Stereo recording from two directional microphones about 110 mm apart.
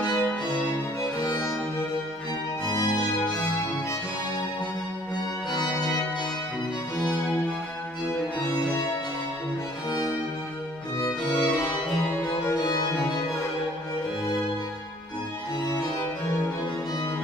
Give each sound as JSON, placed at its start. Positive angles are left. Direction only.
{"t": 0.0, "sound": "music", "side_deg": 15}
{"t": 1.2, "sound": "music", "side_deg": 30}
{"t": 2.6, "sound": "music", "side_deg": 35}
{"t": 9.8, "sound": "music", "side_deg": 35}